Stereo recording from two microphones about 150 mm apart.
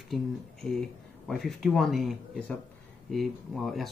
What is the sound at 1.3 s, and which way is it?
Speech, centre (ahead or behind).